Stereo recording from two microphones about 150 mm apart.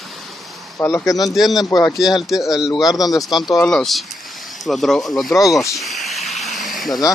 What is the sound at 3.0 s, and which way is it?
Speech, 25° left (ahead or behind).